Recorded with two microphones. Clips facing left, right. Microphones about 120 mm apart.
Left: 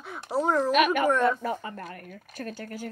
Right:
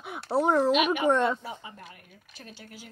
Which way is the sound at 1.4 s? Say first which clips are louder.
Left 9 dB; 55° left (ahead or behind).